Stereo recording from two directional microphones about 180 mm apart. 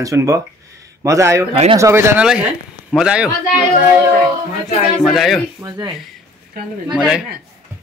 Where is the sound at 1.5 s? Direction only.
30° right (ahead or behind).